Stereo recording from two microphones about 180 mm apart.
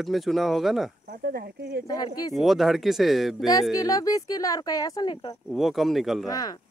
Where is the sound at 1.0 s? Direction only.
60° right (ahead or behind).